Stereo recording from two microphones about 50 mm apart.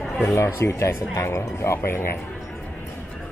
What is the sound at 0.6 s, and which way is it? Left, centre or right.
Speech, left.